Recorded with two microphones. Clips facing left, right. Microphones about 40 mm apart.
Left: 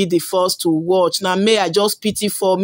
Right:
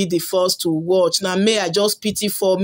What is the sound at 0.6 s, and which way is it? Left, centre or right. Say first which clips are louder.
Speech: left 2 dB; left.